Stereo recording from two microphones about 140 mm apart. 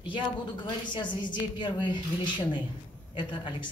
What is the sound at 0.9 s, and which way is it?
Speech, 35° left (ahead or behind).